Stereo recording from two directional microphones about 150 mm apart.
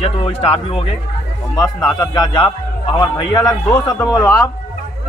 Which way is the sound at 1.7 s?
25° left (ahead or behind).